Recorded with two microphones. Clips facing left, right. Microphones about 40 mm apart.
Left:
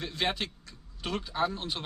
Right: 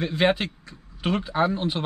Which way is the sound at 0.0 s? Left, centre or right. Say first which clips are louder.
Right 9 dB; right.